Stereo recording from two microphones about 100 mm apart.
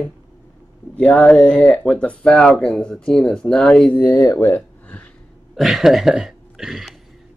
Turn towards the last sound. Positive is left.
turn(degrees=-5)  # may be behind; listen again after turning